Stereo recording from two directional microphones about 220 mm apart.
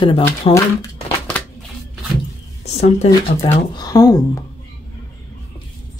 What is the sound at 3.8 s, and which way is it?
Speech, 15° left (ahead or behind).